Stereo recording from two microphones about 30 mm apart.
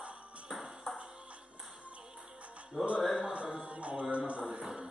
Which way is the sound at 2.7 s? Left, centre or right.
Centre.